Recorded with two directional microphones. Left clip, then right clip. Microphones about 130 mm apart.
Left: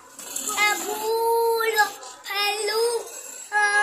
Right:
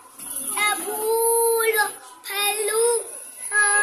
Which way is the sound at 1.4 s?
30° right (ahead or behind).